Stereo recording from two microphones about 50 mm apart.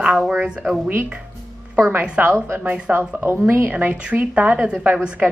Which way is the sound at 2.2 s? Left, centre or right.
Right.